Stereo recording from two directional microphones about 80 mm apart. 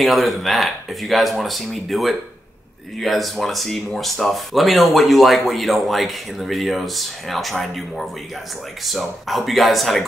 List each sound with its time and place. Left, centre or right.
0.0 s speech: centre